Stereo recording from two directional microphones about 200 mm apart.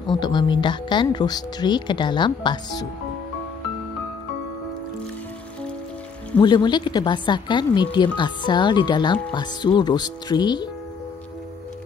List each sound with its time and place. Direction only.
0.1 s speech: 20° left (ahead or behind)
6.4 s speech: 20° left (ahead or behind)